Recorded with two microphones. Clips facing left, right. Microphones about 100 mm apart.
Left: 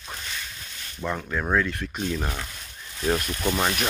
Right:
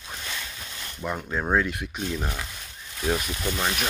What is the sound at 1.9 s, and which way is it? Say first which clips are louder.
Speech: left 2 dB; centre (ahead or behind).